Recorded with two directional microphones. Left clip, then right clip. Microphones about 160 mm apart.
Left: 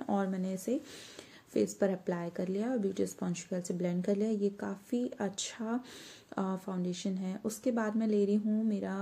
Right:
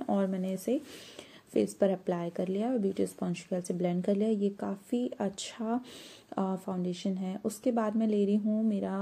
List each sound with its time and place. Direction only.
0.0 s a woman's voice: 15° right (ahead or behind)